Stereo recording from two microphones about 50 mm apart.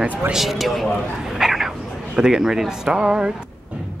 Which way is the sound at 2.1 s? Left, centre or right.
Centre.